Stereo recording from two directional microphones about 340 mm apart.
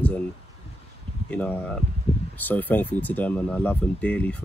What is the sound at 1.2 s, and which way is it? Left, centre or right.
Speech, centre.